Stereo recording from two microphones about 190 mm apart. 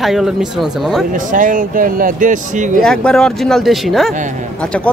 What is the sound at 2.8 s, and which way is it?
Speech, 5° left (ahead or behind).